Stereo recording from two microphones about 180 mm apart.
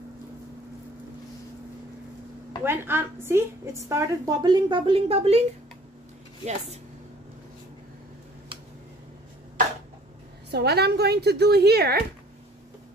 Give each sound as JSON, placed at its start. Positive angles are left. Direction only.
{"t": 2.6, "sound": "a woman's voice", "side_deg": -10}
{"t": 10.5, "sound": "a woman's voice", "side_deg": -65}